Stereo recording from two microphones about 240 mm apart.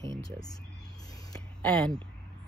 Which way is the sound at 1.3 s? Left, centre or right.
Centre.